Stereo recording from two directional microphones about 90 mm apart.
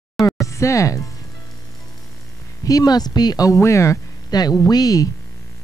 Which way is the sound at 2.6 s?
45° left (ahead or behind).